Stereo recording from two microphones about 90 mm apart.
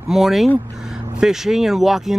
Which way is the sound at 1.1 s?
5° right (ahead or behind).